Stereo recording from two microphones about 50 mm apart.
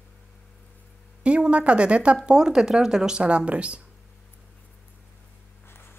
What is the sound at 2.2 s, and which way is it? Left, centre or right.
Speech, centre.